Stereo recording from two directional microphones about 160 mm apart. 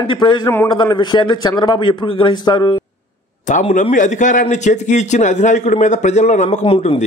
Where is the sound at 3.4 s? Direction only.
50° left (ahead or behind).